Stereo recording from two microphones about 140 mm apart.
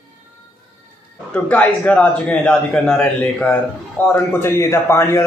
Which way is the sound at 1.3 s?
10° left (ahead or behind).